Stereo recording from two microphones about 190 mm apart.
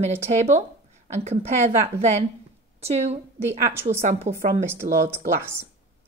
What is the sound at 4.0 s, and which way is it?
Speech, 35° right (ahead or behind).